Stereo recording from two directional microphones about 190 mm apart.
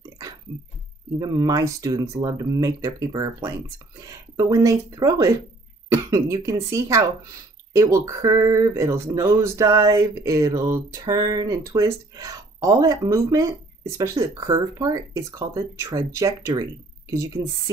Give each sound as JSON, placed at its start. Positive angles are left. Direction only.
{"t": 1.2, "sound": "speech", "side_deg": -20}